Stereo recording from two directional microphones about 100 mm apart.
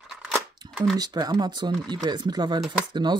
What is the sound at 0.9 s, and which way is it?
Speech, 40° right (ahead or behind).